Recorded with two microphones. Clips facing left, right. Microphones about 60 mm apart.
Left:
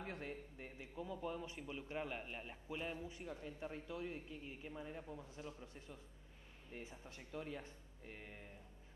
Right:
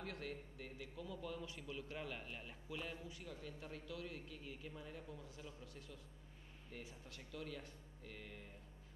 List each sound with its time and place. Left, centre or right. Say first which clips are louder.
0.0 s a man's voice: left 1 dB; left